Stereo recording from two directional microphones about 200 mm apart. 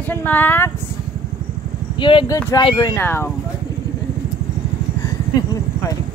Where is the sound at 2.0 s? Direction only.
25° left (ahead or behind).